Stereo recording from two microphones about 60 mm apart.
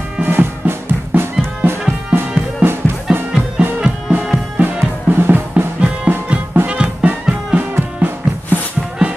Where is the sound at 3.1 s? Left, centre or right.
Centre.